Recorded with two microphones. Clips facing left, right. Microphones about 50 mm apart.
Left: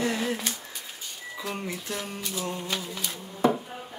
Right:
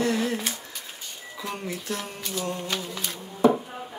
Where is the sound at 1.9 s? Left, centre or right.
Centre.